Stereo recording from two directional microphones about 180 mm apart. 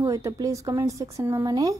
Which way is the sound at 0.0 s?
20° right (ahead or behind).